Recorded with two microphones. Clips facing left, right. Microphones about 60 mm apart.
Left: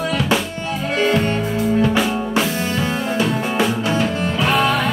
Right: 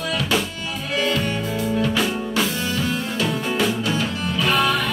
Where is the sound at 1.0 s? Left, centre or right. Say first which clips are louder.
Left 4 dB; left.